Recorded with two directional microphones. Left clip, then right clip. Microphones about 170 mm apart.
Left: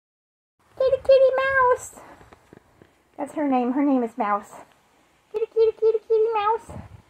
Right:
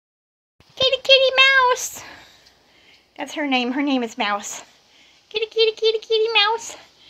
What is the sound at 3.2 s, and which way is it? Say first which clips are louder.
A woman's voice: right 1 dB; 20° right (ahead or behind).